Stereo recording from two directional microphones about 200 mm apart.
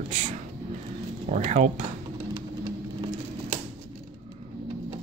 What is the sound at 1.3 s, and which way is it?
Speech, 35° right (ahead or behind).